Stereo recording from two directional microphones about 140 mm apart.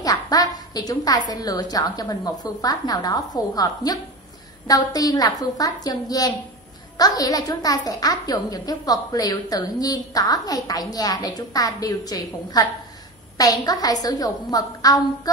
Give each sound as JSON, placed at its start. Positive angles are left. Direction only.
{"t": 0.0, "sound": "a woman's voice", "side_deg": 25}